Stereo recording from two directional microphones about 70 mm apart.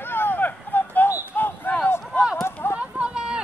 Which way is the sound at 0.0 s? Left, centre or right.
Left.